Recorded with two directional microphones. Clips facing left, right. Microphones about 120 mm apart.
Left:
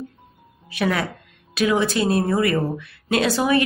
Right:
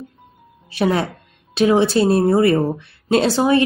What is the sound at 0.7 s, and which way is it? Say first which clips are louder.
A woman's voice: right 4 dB; 30° right (ahead or behind).